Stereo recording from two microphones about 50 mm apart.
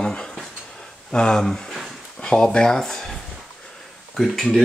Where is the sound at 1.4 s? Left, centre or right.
Centre.